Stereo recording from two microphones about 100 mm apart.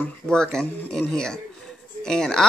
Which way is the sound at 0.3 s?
5° left (ahead or behind).